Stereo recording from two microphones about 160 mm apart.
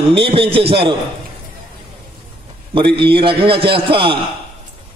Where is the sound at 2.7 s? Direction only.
30° right (ahead or behind).